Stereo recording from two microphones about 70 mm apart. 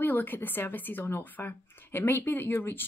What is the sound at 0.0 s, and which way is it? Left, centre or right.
Speech, left.